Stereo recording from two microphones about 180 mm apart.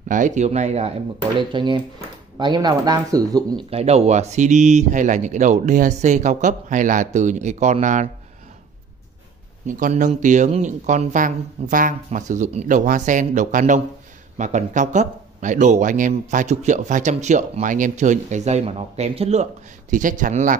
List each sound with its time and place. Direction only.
0.1 s speech: 45° right (ahead or behind)
1.5 s speech: 25° right (ahead or behind)
3.7 s speech: 35° right (ahead or behind)
9.7 s speech: 45° right (ahead or behind)
19.9 s speech: 45° right (ahead or behind)